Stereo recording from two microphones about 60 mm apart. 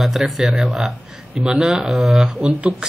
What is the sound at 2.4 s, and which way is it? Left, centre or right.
Speech, centre.